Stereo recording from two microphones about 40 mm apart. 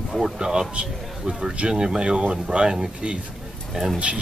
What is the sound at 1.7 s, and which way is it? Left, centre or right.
Speech, centre.